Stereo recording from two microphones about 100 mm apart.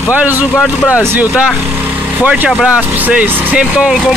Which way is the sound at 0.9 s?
15° right (ahead or behind).